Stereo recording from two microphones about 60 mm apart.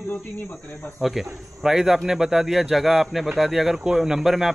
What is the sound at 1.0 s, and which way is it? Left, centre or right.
Speech, centre.